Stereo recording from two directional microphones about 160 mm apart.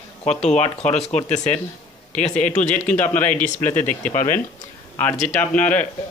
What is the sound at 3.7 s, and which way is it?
Speech, 50° left (ahead or behind).